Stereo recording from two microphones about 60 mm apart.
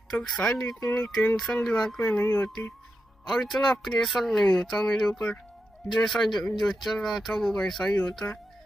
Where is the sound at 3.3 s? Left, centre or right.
Centre.